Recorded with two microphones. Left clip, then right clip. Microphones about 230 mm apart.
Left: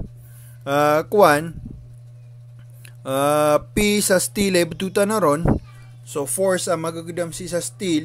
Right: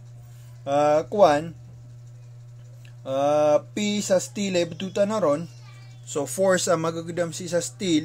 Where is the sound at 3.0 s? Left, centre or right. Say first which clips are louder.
Left 3 dB; left.